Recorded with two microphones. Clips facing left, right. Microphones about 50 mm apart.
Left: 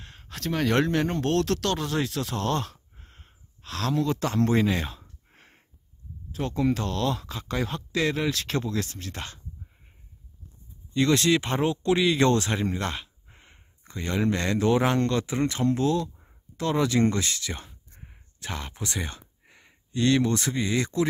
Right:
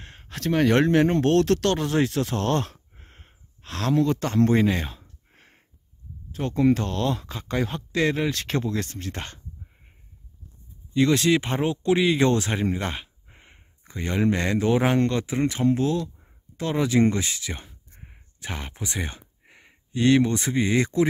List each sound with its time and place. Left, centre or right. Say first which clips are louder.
0.0 s a sound: right 2 dB; right
0.3 s speech: right 5 dB; centre
1.1 s speech: right 5 dB; right
2.0 s speech: right 5 dB; centre
2.3 s a sound: right 3 dB; right
3.9 s speech: right 4 dB; centre
5.3 s wheeze: right 1 dB; centre
6.3 s speech: right 4 dB; centre
10.9 s speech: right 2 dB; centre
18.0 s a sound: right 1 dB; right
20.6 s speech: right 6 dB; right